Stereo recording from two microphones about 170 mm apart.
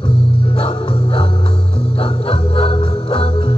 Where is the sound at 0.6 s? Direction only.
35° left (ahead or behind).